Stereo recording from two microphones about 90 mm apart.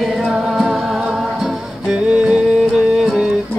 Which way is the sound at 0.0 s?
5° right (ahead or behind).